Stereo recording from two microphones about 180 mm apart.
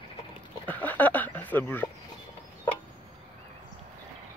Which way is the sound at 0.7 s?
10° left (ahead or behind).